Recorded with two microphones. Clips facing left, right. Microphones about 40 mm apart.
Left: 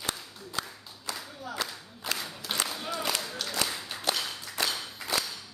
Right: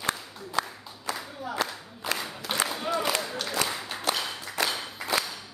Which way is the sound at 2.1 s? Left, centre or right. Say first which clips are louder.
Right 3 dB; centre.